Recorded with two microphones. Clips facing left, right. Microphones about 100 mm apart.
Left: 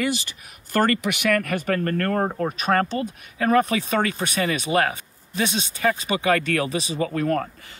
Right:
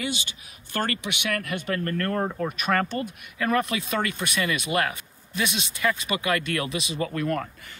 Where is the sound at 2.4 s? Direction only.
35° left (ahead or behind).